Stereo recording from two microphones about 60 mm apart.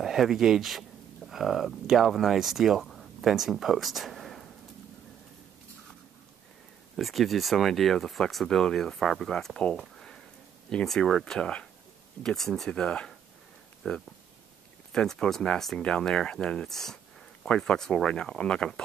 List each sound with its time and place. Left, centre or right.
0.0 s speech: centre
7.0 s speech: centre
9.9 s a sound: centre
11.0 s speech: centre
12.7 s speech: centre
16.6 s a sound: centre
17.6 s speech: centre